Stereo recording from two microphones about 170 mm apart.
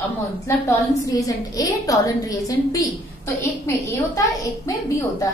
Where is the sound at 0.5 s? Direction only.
20° left (ahead or behind).